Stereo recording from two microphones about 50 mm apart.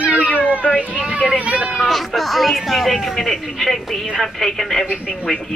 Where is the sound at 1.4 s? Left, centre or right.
Right.